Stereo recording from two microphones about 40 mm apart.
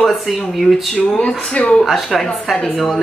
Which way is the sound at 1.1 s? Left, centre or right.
Left.